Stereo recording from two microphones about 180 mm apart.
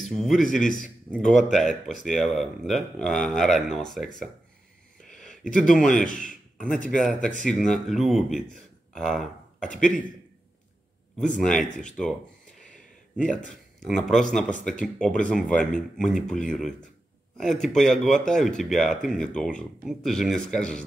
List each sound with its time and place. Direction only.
0.0 s speech: 5° left (ahead or behind)
5.0 s a sound: 5° left (ahead or behind)
5.5 s speech: 5° left (ahead or behind)
6.0 s speech: 45° left (ahead or behind)
6.6 s speech: 5° left (ahead or behind)
11.1 s speech: 5° left (ahead or behind)
13.8 s speech: centre (ahead or behind)